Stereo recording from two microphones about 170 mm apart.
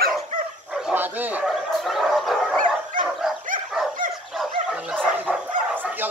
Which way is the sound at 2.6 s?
50° right (ahead or behind).